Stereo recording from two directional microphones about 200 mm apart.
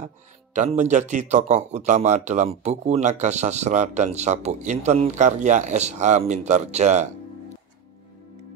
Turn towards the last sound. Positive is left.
turn(degrees=-35)  # may be behind; listen again after turning